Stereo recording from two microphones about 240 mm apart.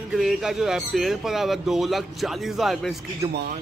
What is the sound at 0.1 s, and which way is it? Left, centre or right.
Speech, centre.